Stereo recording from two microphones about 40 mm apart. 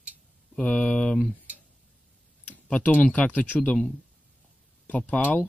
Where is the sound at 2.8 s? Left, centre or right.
Left.